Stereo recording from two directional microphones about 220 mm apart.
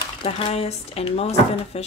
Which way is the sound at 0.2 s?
25° left (ahead or behind).